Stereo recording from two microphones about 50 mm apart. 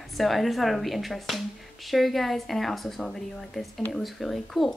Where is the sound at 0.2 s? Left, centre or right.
Centre.